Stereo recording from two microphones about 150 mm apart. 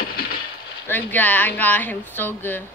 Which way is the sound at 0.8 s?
10° left (ahead or behind).